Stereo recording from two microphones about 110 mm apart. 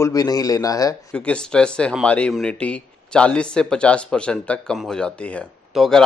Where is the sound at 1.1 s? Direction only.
10° left (ahead or behind).